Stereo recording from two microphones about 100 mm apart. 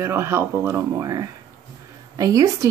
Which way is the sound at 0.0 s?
25° right (ahead or behind).